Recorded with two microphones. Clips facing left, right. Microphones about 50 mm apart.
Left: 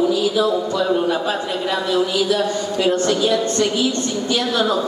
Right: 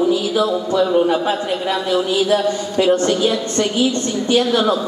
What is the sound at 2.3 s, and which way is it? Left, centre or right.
A woman's voice, right.